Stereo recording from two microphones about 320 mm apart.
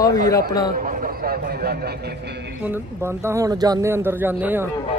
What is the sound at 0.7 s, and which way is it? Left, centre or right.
A man's voice, right.